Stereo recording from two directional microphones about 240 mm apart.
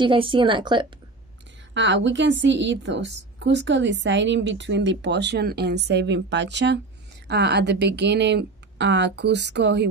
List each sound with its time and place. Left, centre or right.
0.0 s speech: right
1.7 s a woman's voice: right